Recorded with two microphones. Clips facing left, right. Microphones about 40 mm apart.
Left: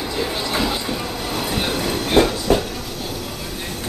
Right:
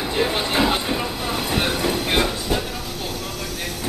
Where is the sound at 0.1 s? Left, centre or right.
Right.